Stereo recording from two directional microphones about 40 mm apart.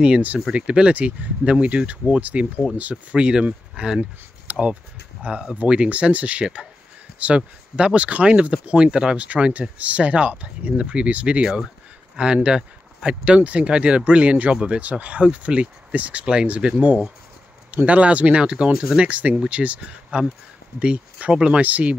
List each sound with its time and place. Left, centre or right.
0.5 s speech: right
3.2 s speech: right
5.7 s speech: right
12.4 s speech: right
21.5 s speech: right